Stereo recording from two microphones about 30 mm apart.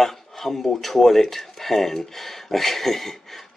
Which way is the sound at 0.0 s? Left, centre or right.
Centre.